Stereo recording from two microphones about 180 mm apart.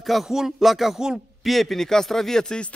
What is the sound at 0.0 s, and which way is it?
A man's voice, centre (ahead or behind).